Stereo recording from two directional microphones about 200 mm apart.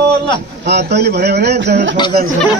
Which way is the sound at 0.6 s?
55° right (ahead or behind).